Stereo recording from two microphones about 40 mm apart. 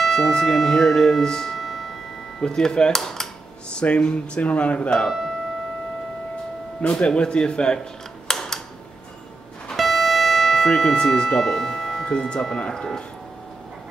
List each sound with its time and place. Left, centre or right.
0.3 s speech: centre
1.2 s music: centre
2.4 s speech: centre
3.8 s speech: left
5.0 s speech: centre
6.8 s speech: left
8.3 s tick-tock: centre
9.8 s music: centre
10.6 s speech: centre
12.0 s speech: left